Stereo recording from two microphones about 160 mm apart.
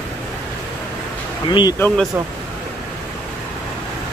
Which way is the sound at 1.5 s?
25° left (ahead or behind).